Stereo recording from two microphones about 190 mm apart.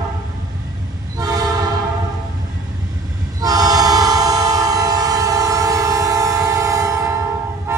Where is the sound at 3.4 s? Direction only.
20° right (ahead or behind).